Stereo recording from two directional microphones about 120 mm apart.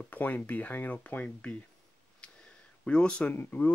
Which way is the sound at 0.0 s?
15° left (ahead or behind).